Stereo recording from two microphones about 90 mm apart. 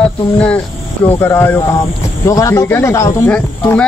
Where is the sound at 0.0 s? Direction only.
10° left (ahead or behind).